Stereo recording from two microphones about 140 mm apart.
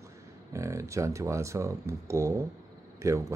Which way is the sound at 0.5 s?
20° right (ahead or behind).